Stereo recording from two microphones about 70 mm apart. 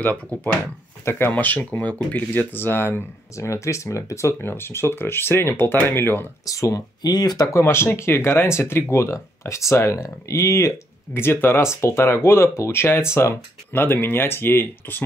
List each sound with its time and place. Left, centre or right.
0.0 s speech: left
6.4 s speech: left
7.0 s speech: left
7.5 s speech: left
11.1 s speech: left